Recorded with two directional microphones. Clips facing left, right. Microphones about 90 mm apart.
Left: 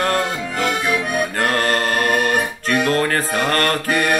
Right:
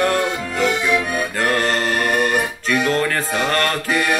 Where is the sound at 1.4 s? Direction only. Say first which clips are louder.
Right 1 dB; 50° left (ahead or behind).